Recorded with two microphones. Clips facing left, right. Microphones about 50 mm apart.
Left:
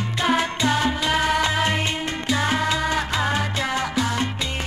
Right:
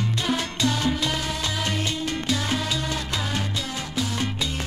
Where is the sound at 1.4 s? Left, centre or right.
Left.